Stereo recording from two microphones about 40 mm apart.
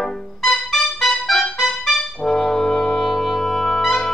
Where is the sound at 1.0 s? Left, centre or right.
Centre.